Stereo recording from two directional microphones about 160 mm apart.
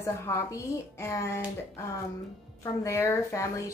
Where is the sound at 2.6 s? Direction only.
20° left (ahead or behind).